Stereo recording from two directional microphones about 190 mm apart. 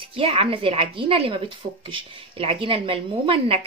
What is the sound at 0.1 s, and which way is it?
A woman's voice, 30° right (ahead or behind).